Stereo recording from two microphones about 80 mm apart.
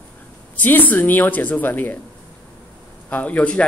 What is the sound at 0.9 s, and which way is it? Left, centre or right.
Speech, left.